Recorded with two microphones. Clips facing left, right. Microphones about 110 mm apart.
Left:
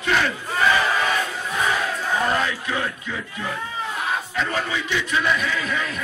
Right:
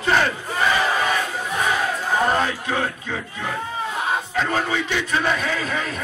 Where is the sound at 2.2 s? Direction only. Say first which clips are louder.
Right 2 dB; 35° right (ahead or behind).